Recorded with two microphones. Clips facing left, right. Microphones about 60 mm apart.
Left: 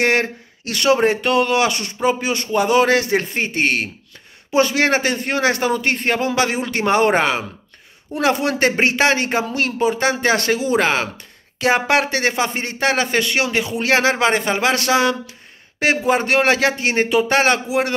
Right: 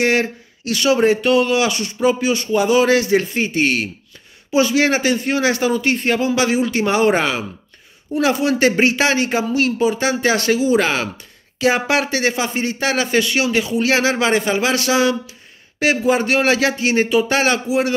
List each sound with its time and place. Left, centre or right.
0.0 s a man's voice: left